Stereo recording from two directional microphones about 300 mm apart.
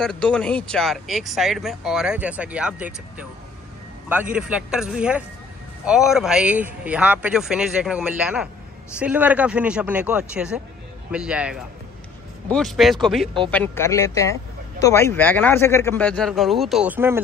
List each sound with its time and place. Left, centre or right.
0.0 s speech: centre
4.1 s speech: centre